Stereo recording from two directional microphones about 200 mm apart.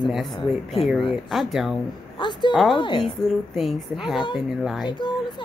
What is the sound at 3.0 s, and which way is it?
Speech, centre (ahead or behind).